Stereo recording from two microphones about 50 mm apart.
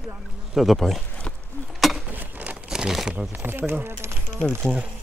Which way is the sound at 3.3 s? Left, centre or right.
Right.